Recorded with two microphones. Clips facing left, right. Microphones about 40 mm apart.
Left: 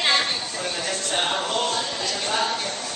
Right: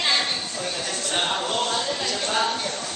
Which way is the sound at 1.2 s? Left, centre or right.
Centre.